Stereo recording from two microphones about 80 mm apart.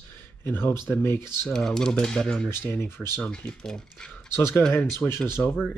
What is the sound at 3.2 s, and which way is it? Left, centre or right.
Speech, centre.